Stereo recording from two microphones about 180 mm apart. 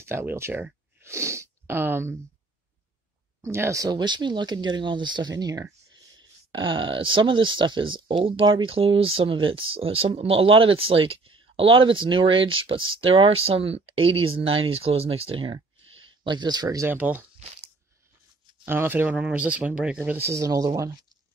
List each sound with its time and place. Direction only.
0.0 s a sound: 15° right (ahead or behind)
3.3 s speech: 15° right (ahead or behind)
18.7 s speech: 10° right (ahead or behind)